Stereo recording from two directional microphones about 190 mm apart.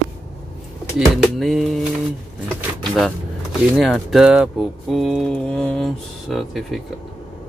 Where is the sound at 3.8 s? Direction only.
Centre (ahead or behind).